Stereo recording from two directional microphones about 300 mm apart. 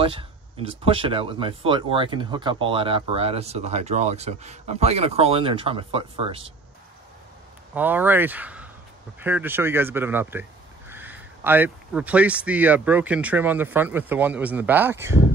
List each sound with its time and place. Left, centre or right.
0.0 s speech: centre
7.7 s speech: centre